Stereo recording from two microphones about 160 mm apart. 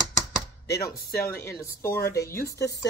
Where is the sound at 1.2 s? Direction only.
15° left (ahead or behind).